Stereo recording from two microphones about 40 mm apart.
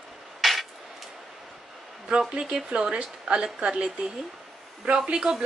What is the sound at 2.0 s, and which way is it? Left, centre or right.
A woman's voice, right.